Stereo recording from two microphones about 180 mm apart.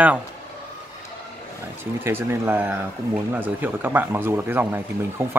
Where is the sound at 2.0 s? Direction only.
15° right (ahead or behind).